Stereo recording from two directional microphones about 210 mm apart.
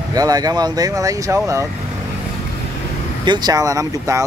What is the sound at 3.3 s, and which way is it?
Speech, 20° right (ahead or behind).